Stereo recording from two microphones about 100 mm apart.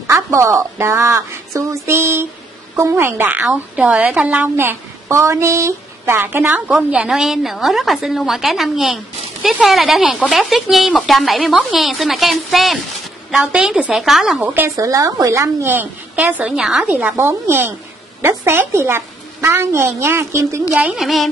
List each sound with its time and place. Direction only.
0.1 s a woman's voice: 30° right (ahead or behind); by 14.5 s 5° right (ahead or behind)
14.8 s a woman's voice: 35° right (ahead or behind); by 17.1 s 10° right (ahead or behind)
17.2 s a woman's voice: 25° right (ahead or behind)
20.8 s a woman's voice: 5° right (ahead or behind)